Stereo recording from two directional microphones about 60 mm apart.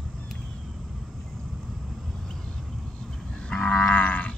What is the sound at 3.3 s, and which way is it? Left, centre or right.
Livestock, centre.